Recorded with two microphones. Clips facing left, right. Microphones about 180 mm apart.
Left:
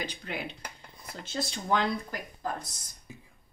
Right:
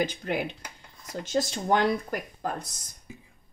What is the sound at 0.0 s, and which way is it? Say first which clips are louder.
Speech: right 8 dB; 50° right (ahead or behind).